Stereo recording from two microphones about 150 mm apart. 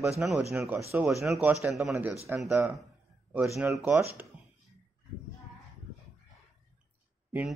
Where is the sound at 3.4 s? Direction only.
Centre (ahead or behind).